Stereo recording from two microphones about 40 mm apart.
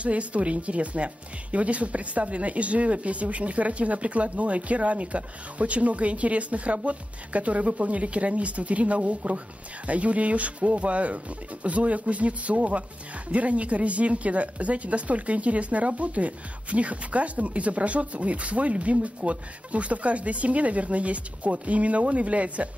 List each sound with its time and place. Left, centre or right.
0.0 s a woman's voice: right